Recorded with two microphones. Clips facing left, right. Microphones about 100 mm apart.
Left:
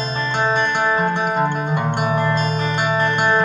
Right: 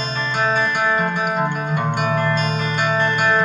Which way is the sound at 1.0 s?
30° left (ahead or behind).